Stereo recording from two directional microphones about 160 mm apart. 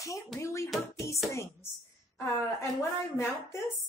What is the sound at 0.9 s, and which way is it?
Hands, 20° left (ahead or behind).